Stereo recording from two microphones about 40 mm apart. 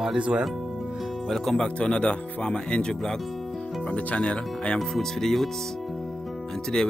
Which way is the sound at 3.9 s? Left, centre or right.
Left.